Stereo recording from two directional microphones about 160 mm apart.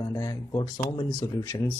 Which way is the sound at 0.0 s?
20° left (ahead or behind).